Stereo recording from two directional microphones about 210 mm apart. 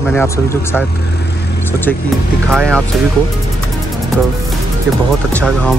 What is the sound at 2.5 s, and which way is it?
Speech, centre (ahead or behind).